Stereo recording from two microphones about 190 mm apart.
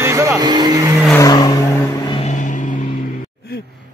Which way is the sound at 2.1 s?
35° left (ahead or behind).